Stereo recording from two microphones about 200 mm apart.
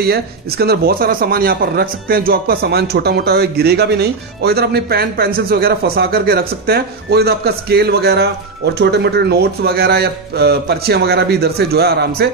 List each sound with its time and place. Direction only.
0.0 s speech: 50° right (ahead or behind)